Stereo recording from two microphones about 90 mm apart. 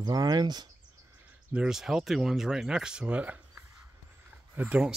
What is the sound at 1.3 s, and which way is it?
Speech, 10° right (ahead or behind).